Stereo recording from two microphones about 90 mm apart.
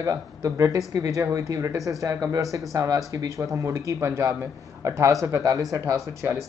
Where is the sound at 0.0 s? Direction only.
40° right (ahead or behind).